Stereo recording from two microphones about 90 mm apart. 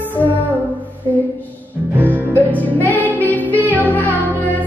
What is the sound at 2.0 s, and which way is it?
Music, 20° left (ahead or behind).